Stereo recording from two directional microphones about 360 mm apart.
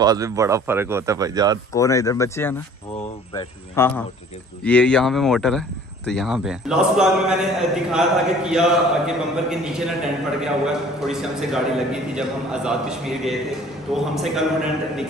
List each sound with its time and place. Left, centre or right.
0.0 s speech: centre
1.7 s speech: centre